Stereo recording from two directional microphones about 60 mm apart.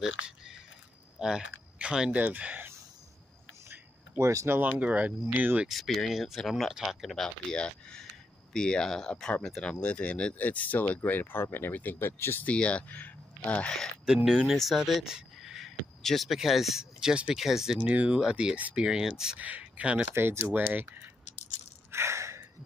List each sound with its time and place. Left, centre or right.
1.2 s speech: centre
4.2 s speech: right
4.5 s speech: right
5.7 s speech: centre
7.2 s speech: centre; by 12.4 s left
12.4 s speech: centre
14.5 s speech: centre
15.1 s a sound: centre
16.0 s speech: centre
17.1 s speech: centre
19.3 s speech: right
20.2 s speech: right
21.9 s gasp: right